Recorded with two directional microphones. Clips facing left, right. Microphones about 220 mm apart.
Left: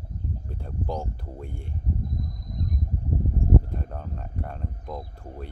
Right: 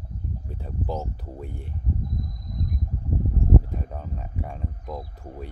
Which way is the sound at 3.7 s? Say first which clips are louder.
Right 1 dB; 5° right (ahead or behind).